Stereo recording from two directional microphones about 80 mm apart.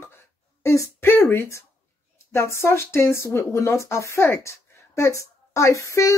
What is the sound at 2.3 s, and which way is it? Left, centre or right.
Speech, left.